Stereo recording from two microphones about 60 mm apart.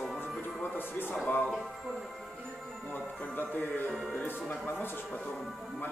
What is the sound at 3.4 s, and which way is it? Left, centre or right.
Speech, left.